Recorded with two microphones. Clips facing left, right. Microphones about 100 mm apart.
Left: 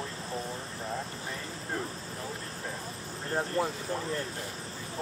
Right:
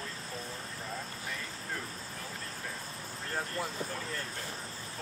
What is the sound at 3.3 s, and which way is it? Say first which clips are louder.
Speech: left 7 dB; 25° left (ahead or behind).